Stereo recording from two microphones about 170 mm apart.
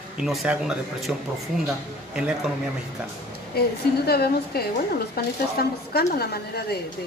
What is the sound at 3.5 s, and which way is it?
Speech, 65° left (ahead or behind).